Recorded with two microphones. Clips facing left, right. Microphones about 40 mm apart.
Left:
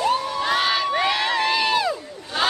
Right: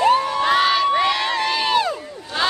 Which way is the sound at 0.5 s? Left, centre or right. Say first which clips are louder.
Right 4 dB; centre.